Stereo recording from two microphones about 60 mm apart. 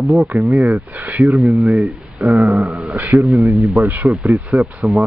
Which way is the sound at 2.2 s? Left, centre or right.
Right.